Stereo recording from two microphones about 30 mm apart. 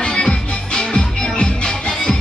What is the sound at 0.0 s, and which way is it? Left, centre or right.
Music, left.